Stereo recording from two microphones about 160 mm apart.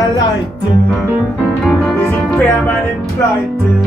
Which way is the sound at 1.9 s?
15° left (ahead or behind).